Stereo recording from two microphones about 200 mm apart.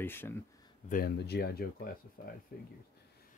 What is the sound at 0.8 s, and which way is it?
Speech, 45° left (ahead or behind).